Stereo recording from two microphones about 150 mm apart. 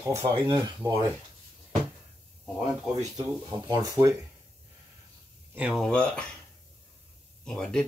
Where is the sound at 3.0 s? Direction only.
25° right (ahead or behind).